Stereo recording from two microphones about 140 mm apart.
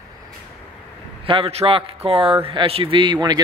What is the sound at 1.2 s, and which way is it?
A man's voice, 40° right (ahead or behind).